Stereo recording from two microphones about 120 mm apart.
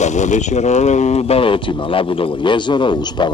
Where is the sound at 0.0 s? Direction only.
80° left.